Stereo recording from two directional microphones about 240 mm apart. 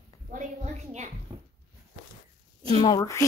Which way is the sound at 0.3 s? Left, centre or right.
Right.